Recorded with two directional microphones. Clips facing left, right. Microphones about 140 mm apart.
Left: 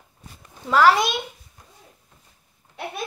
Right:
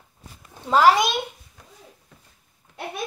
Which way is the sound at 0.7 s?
15° right (ahead or behind).